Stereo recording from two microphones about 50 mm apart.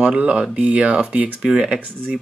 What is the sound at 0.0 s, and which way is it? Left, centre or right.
Speech, right.